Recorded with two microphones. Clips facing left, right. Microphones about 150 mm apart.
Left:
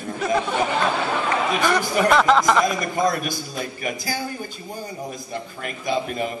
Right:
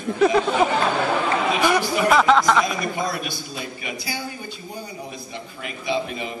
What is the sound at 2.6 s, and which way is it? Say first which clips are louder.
A man's voice: left 4 dB; 45° left (ahead or behind).